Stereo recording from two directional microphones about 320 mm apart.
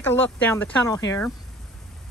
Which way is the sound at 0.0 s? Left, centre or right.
Centre.